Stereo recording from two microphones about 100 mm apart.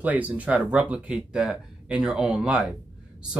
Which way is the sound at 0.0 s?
15° right (ahead or behind).